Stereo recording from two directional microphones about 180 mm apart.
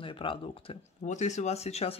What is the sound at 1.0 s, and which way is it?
Speech, 40° left (ahead or behind).